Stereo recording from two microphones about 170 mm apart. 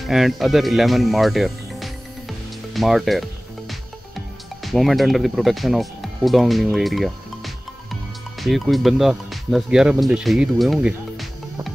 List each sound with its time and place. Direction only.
0.0 s music: centre (ahead or behind)
4.6 s speech: centre (ahead or behind)